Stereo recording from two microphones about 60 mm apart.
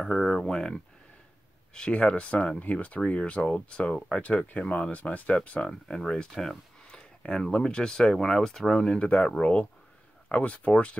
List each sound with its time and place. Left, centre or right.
0.0 s speech: centre
6.3 s speech: centre
6.9 s speech: centre